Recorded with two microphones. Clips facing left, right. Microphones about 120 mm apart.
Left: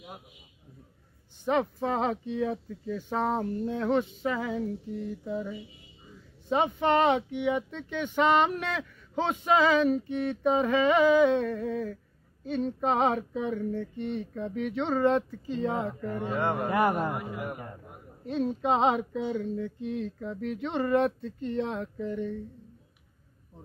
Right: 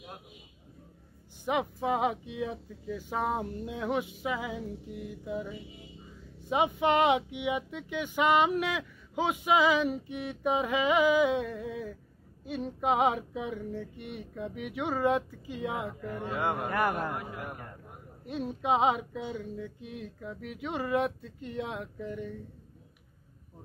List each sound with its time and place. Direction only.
1.4 s speech: 10° right (ahead or behind)
16.6 s a man's voice: 15° left (ahead or behind)
17.1 s a man's voice: centre (ahead or behind)
18.2 s speech: 10° right (ahead or behind)